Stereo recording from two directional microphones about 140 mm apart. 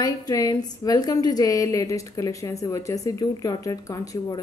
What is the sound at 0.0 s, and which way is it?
A woman's voice, 25° left (ahead or behind).